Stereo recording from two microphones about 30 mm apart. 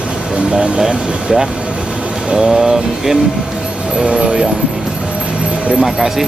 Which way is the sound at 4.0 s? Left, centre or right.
Right.